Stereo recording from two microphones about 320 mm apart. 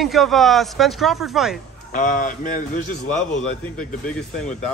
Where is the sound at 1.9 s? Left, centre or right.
Left.